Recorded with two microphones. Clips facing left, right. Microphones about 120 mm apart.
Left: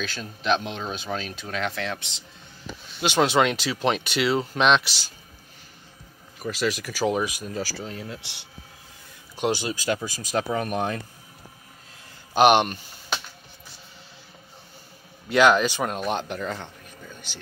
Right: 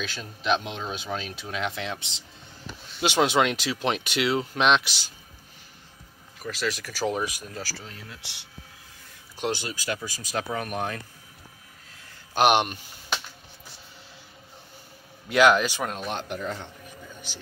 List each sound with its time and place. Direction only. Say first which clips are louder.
0.0 s speech: left 2 dB; 5° right (ahead or behind); by 2.2 s 25° right (ahead or behind)
3.2 s speech: left 2 dB; 5° right (ahead or behind)
6.4 s speech: left 4 dB; 10° left (ahead or behind)
9.4 s speech: left 4 dB; 10° left (ahead or behind)
9.7 s speech: left 5 dB; 25° left (ahead or behind)
12.4 s speech: left 3 dB; 5° right (ahead or behind)
15.2 s speech: left 1 dB; 5° right (ahead or behind)
15.8 s speech: left 4 dB; 5° left (ahead or behind)